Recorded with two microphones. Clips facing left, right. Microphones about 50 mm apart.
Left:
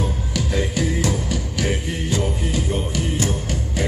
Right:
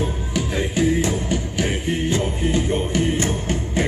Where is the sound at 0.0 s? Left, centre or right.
Right.